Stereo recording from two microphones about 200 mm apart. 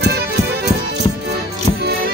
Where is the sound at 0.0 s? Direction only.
55° right (ahead or behind).